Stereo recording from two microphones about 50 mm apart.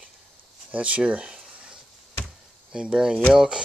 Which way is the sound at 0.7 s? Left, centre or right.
Right.